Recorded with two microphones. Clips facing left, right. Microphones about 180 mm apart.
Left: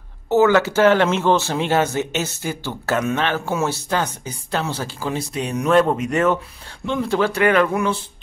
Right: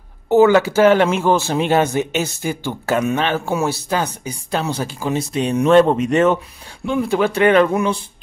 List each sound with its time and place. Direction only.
0.3 s speech: 15° right (ahead or behind)
6.9 s speech: 10° right (ahead or behind)